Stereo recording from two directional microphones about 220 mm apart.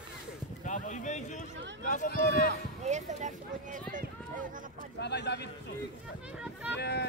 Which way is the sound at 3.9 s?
35° right (ahead or behind).